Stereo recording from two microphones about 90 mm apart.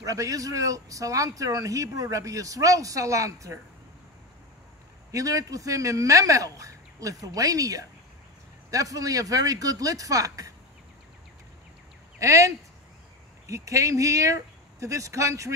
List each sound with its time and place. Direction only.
0.0 s speech: 40° right (ahead or behind)
5.1 s speech: 40° right (ahead or behind)
12.2 s speech: 35° right (ahead or behind)